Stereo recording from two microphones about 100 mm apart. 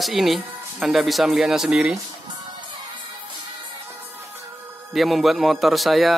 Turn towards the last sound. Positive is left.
turn(degrees=0)  # may be behind; listen again after turning